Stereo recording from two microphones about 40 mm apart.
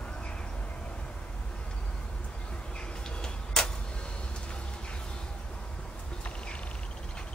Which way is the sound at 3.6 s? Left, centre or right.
Centre.